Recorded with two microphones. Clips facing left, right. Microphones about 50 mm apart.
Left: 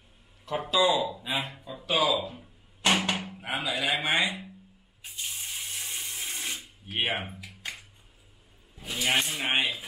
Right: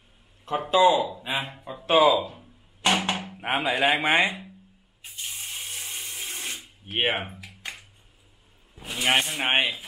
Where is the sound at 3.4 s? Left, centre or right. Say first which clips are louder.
Right 9 dB; right.